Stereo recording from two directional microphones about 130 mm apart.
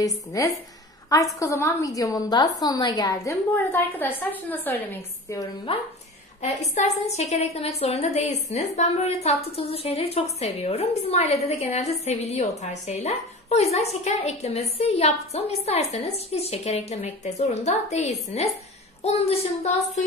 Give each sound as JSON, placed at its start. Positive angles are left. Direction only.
{"t": 0.0, "sound": "a woman's voice", "side_deg": 25}
{"t": 3.5, "sound": "a woman's voice", "side_deg": 15}
{"t": 5.7, "sound": "a woman's voice", "side_deg": 45}
{"t": 6.7, "sound": "a woman's voice", "side_deg": 60}
{"t": 19.0, "sound": "a woman's voice", "side_deg": 50}